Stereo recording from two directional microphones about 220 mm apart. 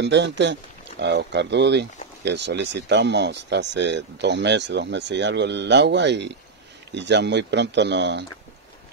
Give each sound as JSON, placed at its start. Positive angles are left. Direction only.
{"t": 0.0, "sound": "speech", "side_deg": -50}